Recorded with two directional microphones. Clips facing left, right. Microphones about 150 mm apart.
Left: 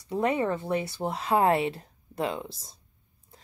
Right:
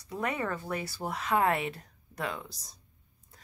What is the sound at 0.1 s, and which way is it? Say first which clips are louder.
A woman's voice: left 7 dB; 25° left (ahead or behind).